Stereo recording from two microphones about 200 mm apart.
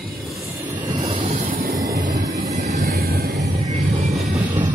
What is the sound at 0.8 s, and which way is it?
Vehicle, 25° right (ahead or behind).